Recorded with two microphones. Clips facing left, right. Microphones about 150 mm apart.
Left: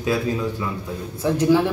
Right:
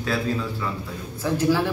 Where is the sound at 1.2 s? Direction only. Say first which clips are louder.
Left 4 dB; 20° left (ahead or behind).